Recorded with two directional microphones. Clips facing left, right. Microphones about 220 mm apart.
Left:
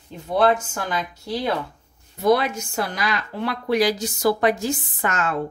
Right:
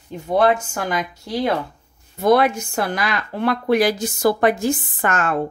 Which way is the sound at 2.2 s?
55° right (ahead or behind).